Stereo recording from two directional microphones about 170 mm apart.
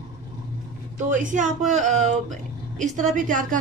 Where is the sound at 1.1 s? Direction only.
50° right (ahead or behind).